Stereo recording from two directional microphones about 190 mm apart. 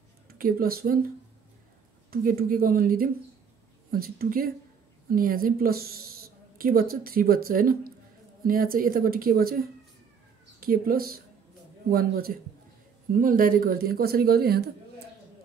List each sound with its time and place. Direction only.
0.3 s speech: 50° right (ahead or behind)
2.0 s a man's voice: 50° right (ahead or behind)